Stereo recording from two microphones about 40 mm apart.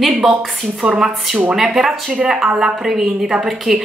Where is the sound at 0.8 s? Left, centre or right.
Right.